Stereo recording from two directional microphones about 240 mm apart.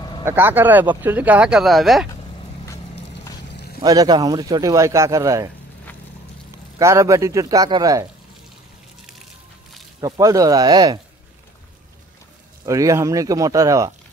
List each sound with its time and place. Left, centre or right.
0.2 s speech: centre
3.5 s a sound: left
3.8 s speech: centre
6.8 s speech: centre
9.9 s speech: centre
12.6 s speech: centre